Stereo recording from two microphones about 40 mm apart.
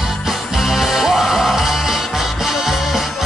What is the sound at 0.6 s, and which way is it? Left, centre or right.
Music, centre.